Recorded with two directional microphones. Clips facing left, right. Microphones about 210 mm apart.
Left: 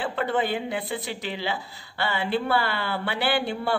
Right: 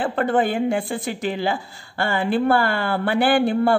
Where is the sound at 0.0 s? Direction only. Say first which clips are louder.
Right 6 dB; 50° right (ahead or behind).